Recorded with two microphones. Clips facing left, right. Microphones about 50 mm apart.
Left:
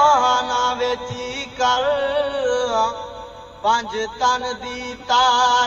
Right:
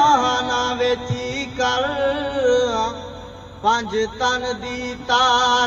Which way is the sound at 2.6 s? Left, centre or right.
Right.